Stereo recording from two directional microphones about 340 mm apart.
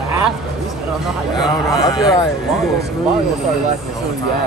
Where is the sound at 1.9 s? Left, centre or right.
Centre.